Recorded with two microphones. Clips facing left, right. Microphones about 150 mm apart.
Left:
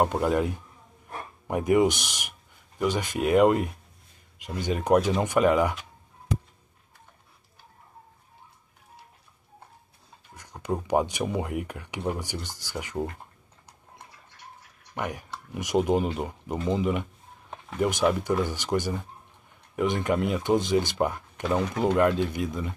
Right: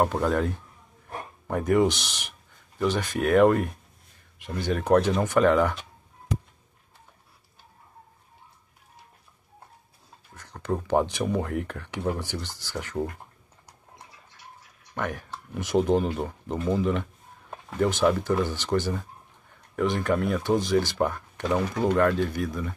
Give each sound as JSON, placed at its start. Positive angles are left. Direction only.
{"t": 0.0, "sound": "speech", "side_deg": 15}
{"t": 10.3, "sound": "speech", "side_deg": 15}
{"t": 15.0, "sound": "speech", "side_deg": 15}